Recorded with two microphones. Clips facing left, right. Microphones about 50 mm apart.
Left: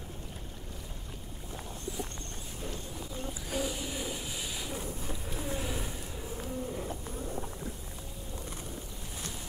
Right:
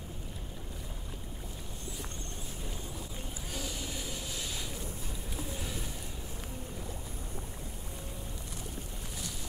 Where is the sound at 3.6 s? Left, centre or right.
Centre.